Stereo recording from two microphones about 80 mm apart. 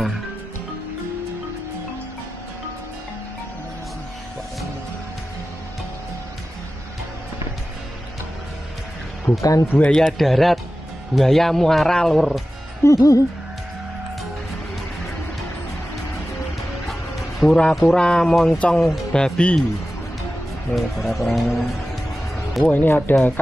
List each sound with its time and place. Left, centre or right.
9.4 s speech: left
9.7 s speech: centre
9.9 s speech: centre
12.8 s speech: left
17.4 s speech: centre
20.7 s speech: centre
22.7 s speech: left